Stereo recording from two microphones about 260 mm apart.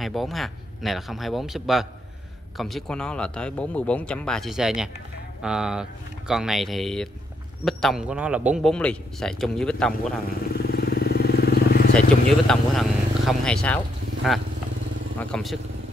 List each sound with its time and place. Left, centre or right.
0.0 s a man's voice: centre
10.5 s vehicle: left
12.4 s a man's voice: centre